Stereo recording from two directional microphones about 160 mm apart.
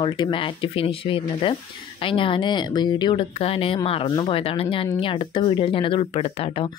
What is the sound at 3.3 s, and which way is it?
Speech, 40° left (ahead or behind).